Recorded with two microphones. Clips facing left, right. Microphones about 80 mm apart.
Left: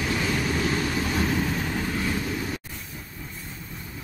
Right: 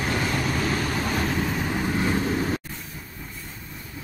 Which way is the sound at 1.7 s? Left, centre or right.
Right.